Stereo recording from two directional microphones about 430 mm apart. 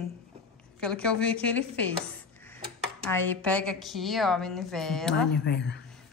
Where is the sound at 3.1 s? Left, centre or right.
Centre.